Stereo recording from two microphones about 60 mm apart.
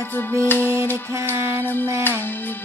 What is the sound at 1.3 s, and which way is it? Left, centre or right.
Mantra, right.